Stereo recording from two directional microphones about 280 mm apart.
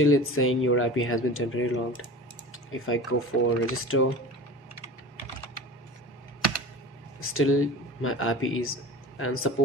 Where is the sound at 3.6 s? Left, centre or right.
Left.